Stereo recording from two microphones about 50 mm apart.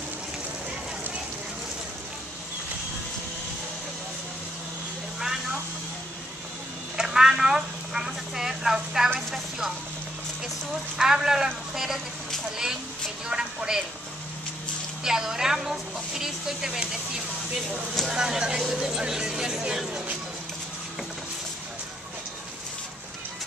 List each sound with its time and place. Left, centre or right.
5.2 s vehicle: centre
7.0 s a sound: centre
11.0 s speech: centre
13.3 s speech: centre
15.0 s speech: centre
18.1 s speech: centre